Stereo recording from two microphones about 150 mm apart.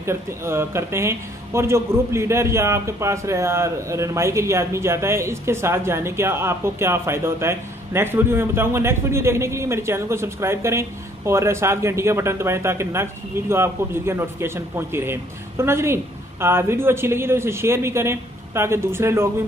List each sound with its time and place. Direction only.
0.0 s speech: 15° right (ahead or behind)